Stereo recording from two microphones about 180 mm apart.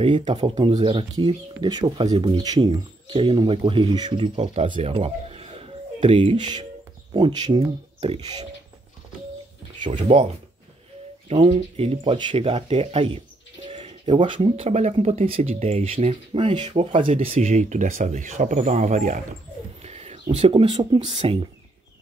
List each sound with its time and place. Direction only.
0.4 s speech: 30° right (ahead or behind)
9.9 s speech: 35° right (ahead or behind)
11.2 s speech: 35° right (ahead or behind)